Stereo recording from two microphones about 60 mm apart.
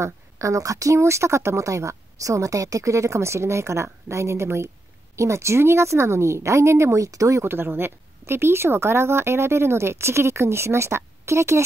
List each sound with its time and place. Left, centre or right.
0.0 s speech: right
7.4 s speech: right